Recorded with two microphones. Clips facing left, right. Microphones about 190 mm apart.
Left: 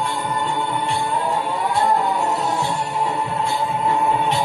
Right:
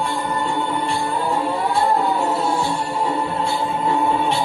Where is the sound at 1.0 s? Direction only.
30° right (ahead or behind).